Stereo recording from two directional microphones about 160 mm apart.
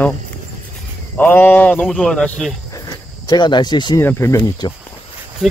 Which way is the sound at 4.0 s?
15° left (ahead or behind).